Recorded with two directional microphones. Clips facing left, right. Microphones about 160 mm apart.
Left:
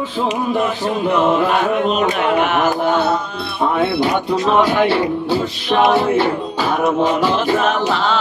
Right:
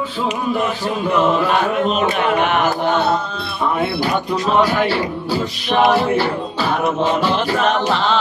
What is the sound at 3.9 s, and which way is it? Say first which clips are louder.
Speech: left 3 dB; 25° left (ahead or behind).